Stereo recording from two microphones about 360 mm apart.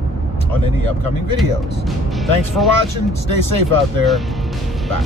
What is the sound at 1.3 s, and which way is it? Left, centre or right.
Speech, centre.